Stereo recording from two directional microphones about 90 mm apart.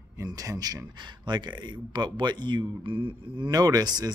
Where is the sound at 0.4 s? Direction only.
45° right (ahead or behind).